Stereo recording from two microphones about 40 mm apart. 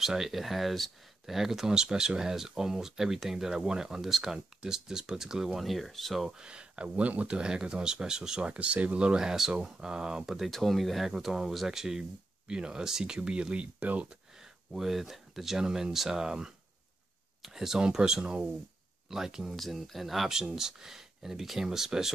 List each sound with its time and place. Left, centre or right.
0.0 s speech: centre
5.6 s speech: centre
6.3 s speech: right
7.3 s speech: right
8.5 s speech: right; by 10.3 s centre
10.5 s speech: centre
11.1 s speech: centre; by 13.8 s right
14.7 s speech: centre
19.5 s speech: centre